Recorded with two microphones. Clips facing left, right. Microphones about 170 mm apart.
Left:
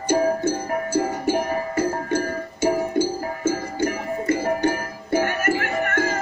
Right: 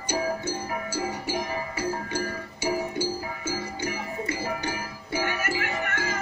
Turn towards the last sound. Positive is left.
turn(degrees=50)  # may be behind; listen again after turning